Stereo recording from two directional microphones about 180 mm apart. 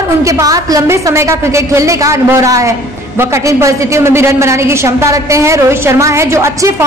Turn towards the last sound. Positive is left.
turn(degrees=-15)  # may be behind; listen again after turning